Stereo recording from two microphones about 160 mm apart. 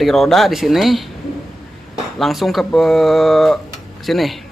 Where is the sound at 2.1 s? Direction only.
Centre (ahead or behind).